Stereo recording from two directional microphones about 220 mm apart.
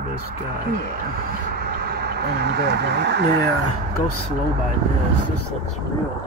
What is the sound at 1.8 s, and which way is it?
Speech, 45° right (ahead or behind).